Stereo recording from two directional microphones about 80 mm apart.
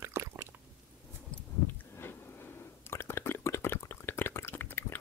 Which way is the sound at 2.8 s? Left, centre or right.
Left.